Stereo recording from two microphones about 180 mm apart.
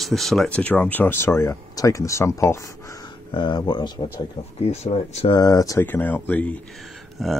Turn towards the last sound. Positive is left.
turn(degrees=0)  # may be behind; listen again after turning